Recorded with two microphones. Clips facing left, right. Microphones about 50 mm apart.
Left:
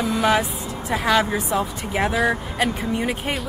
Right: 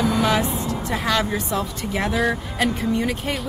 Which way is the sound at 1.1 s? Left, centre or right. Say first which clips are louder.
Left 4 dB; centre.